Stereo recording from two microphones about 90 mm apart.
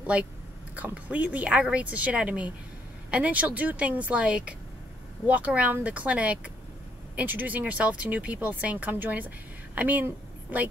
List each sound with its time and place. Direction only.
0.0 s a woman's voice: 15° right (ahead or behind)